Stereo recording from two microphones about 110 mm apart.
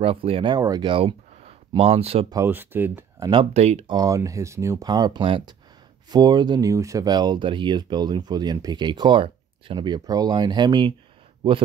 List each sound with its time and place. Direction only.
0.0 s speech: 60° right (ahead or behind)
0.6 s speech: 35° right (ahead or behind)
0.9 s a sound: 60° right (ahead or behind)
1.8 s speech: 65° right (ahead or behind)
2.4 s speech: 20° right (ahead or behind)
3.2 s speech: 45° right (ahead or behind)
3.5 s speech: 80° right
3.8 s speech: 35° right (ahead or behind)